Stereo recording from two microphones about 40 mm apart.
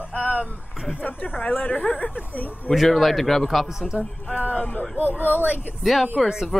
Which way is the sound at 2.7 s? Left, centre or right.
Centre.